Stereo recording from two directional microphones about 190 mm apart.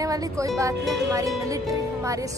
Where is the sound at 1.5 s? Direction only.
15° right (ahead or behind).